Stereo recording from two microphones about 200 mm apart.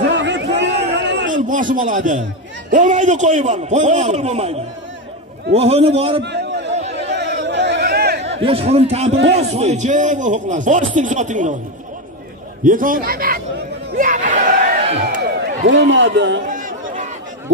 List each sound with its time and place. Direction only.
0.1 s a sound: 60° right (ahead or behind)
1.3 s speech: 40° right (ahead or behind)
6.2 s a sound: 60° right (ahead or behind)
7.4 s chatter: 60° right (ahead or behind)
8.4 s speech: 30° right (ahead or behind)
12.6 s a man's voice: 45° right (ahead or behind)
13.9 s battle cry: 40° right (ahead or behind)
15.2 s a man's voice: 60° right (ahead or behind)
16.4 s chatter: 40° right (ahead or behind)